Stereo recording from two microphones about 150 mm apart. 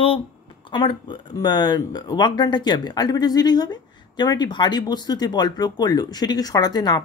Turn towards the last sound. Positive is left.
turn(degrees=25)  # may be behind; listen again after turning